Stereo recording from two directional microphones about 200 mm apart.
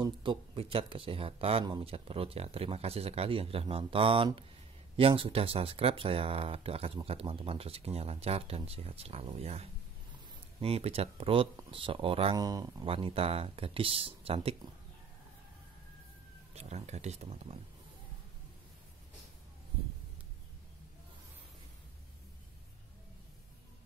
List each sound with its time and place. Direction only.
0.0 s speech: 25° right (ahead or behind)
12.4 s speech: 15° right (ahead or behind)
12.8 s speech: 25° right (ahead or behind)
16.5 s speech: 35° right (ahead or behind)